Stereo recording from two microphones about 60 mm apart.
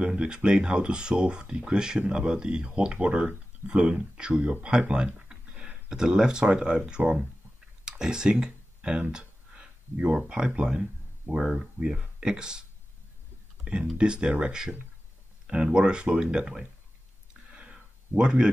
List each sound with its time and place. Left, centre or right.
0.0 s speech: centre
13.9 s speech: centre
17.6 s a sound: centre